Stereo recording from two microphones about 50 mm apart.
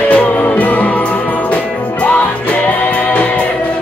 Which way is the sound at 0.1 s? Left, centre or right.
Left.